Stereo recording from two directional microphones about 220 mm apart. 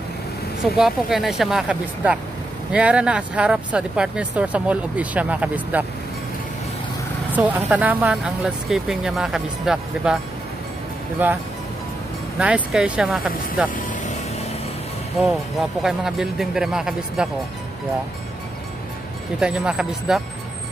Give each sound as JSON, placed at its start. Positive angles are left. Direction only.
{"t": 0.7, "sound": "speech", "side_deg": 0}
{"t": 7.3, "sound": "speech", "side_deg": -5}
{"t": 11.2, "sound": "speech", "side_deg": -10}
{"t": 15.8, "sound": "speech", "side_deg": 0}
{"t": 19.4, "sound": "speech", "side_deg": -5}